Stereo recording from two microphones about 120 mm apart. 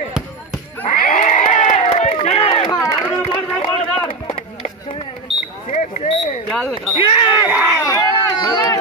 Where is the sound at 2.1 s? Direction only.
65° left (ahead or behind).